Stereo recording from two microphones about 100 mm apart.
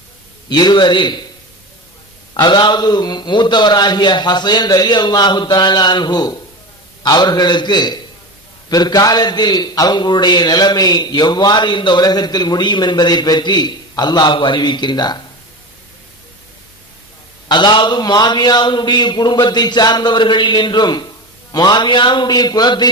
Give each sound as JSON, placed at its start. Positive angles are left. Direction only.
{"t": 0.5, "sound": "a man's voice", "side_deg": 45}
{"t": 2.3, "sound": "a man's voice", "side_deg": 45}
{"t": 17.5, "sound": "a man's voice", "side_deg": 45}